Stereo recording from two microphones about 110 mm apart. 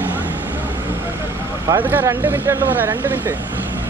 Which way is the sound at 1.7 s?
20° right (ahead or behind).